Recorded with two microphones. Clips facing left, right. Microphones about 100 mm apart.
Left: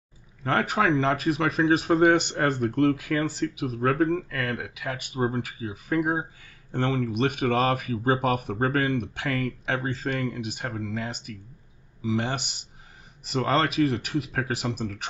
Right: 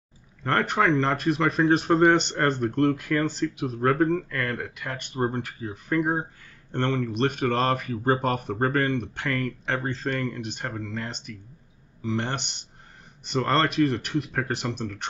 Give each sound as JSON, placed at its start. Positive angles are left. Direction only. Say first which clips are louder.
{"t": 0.4, "sound": "speech", "louder": "right 1 dB", "side_deg": 5}